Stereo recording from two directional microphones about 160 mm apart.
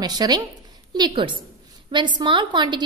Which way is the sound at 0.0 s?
25° right (ahead or behind).